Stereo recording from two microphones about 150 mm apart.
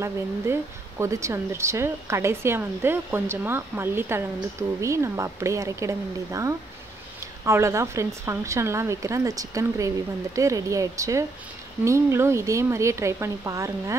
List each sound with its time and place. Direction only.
0.0 s a woman's voice: 20° right (ahead or behind)